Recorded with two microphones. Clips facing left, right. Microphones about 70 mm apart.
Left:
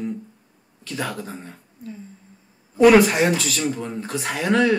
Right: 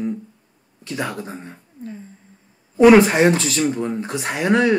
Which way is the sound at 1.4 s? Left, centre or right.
Right.